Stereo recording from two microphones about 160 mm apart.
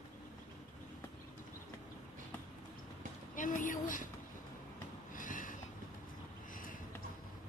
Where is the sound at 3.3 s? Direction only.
55° left (ahead or behind).